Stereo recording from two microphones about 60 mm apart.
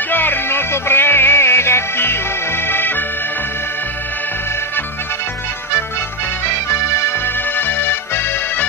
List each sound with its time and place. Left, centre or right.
0.1 s music: left
7.1 s music: left